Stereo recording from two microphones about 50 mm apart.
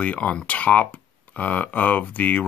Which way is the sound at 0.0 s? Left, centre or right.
Left.